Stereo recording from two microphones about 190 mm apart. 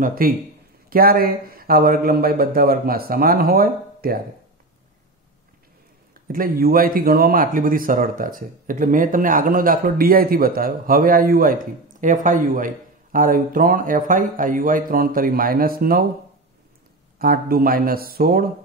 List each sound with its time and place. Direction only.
0.0 s speech: 50° right (ahead or behind)
6.1 s speech: 50° right (ahead or behind)
17.2 s speech: 50° right (ahead or behind)